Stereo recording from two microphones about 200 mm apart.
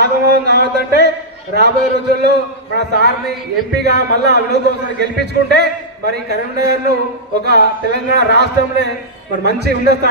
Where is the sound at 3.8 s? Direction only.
55° right (ahead or behind).